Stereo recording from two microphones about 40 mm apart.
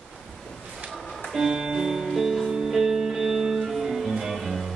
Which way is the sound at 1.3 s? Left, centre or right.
Centre.